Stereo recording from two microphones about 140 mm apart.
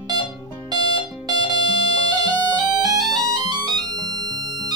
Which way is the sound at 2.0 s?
30° right (ahead or behind).